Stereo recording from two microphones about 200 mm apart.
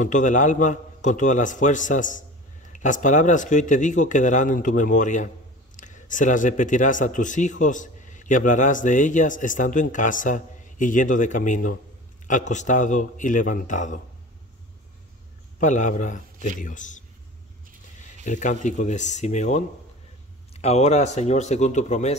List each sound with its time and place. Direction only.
0.0 s speech: 40° left (ahead or behind)
15.6 s speech: 40° left (ahead or behind)
18.2 s speech: 40° left (ahead or behind)